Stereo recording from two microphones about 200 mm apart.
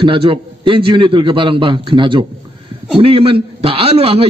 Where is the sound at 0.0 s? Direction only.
25° right (ahead or behind).